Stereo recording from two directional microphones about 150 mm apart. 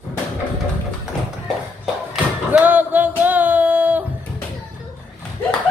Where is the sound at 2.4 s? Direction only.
10° right (ahead or behind).